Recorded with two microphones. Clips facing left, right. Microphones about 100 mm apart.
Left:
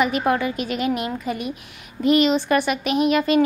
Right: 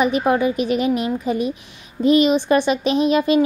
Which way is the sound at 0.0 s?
20° right (ahead or behind).